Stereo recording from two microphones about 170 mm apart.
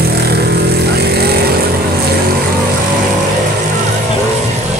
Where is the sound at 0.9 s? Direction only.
70° right (ahead or behind).